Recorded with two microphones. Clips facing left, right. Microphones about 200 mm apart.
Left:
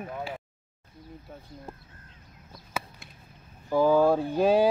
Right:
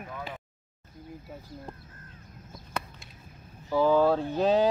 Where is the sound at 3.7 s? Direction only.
10° left (ahead or behind).